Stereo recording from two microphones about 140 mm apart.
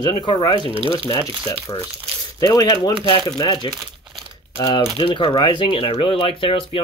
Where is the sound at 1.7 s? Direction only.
30° left (ahead or behind).